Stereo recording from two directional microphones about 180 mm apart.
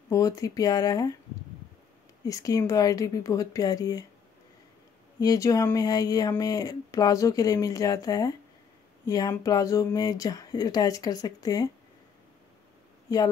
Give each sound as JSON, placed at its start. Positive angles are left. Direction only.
{"t": 0.1, "sound": "speech", "side_deg": 20}
{"t": 2.2, "sound": "speech", "side_deg": 20}
{"t": 5.2, "sound": "speech", "side_deg": 20}
{"t": 13.1, "sound": "speech", "side_deg": 20}